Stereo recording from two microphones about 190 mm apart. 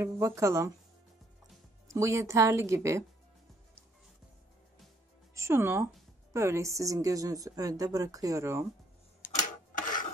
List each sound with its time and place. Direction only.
0.0 s a woman's voice: 15° right (ahead or behind)
1.9 s a woman's voice: 15° right (ahead or behind)
5.3 s a woman's voice: 15° right (ahead or behind)
9.2 s a sound: 45° left (ahead or behind)